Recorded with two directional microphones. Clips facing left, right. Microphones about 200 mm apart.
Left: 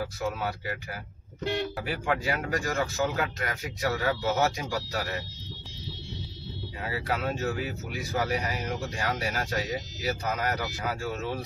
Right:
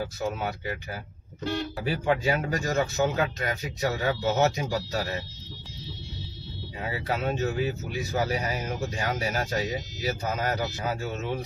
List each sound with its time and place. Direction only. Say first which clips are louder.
0.0 s speech: right 1 dB; 25° right (ahead or behind)
1.9 s speech: right 6 dB; 25° right (ahead or behind)
6.8 s speech: right 1 dB; 20° right (ahead or behind)